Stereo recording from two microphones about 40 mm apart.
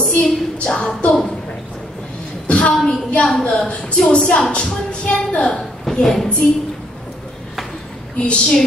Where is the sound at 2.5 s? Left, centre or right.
Left.